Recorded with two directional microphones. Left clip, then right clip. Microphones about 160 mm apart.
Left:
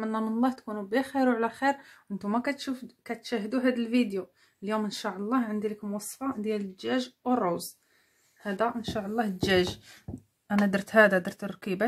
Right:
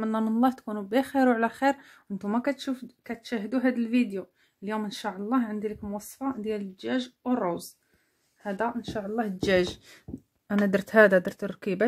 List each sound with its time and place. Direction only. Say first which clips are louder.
0.0 s speech: right 3 dB; 50° right (ahead or behind)